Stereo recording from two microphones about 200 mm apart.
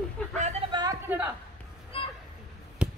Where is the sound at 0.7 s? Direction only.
20° right (ahead or behind).